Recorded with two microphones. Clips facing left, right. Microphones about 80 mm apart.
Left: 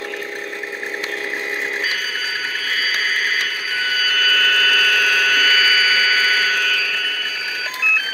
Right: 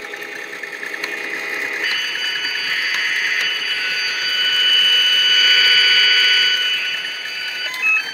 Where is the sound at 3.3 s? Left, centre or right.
Left.